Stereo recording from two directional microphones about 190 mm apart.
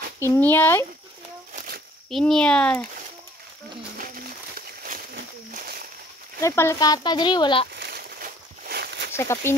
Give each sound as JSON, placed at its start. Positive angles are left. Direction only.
{"t": 0.2, "sound": "speech", "side_deg": 10}
{"t": 2.0, "sound": "a child's voice", "side_deg": 0}
{"t": 4.6, "sound": "a sound", "side_deg": -50}
{"t": 6.4, "sound": "speech", "side_deg": 15}
{"t": 7.7, "sound": "a sound", "side_deg": -55}
{"t": 9.1, "sound": "speech", "side_deg": 15}